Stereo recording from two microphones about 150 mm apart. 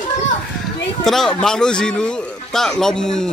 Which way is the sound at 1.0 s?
Centre (ahead or behind).